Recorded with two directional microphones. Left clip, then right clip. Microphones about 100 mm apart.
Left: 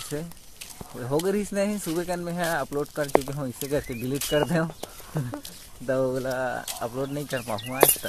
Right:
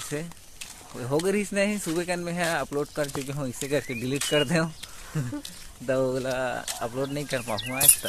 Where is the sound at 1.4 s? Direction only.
15° left (ahead or behind).